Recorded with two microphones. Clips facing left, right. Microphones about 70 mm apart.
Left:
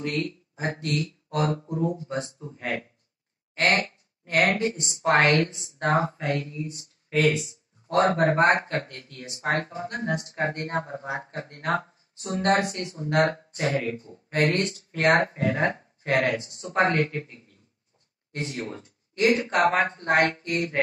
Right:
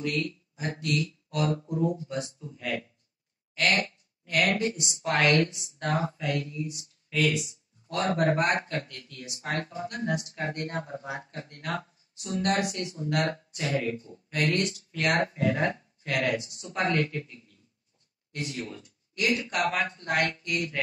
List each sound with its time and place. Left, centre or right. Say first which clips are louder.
0.0 s speech: left 1 dB; left